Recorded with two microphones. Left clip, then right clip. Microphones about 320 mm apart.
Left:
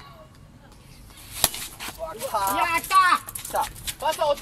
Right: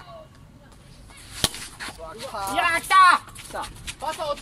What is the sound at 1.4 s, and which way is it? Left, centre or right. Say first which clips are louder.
Chop: even; centre.